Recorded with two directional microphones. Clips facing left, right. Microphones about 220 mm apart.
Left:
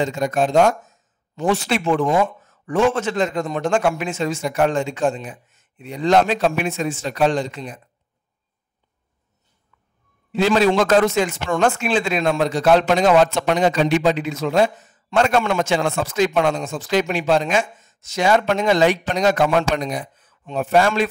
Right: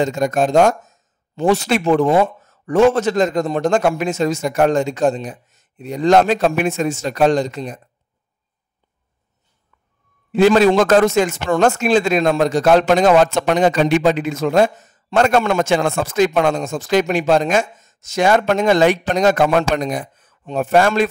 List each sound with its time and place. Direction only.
0.0 s a man's voice: 45° right (ahead or behind)
10.3 s a man's voice: 50° right (ahead or behind)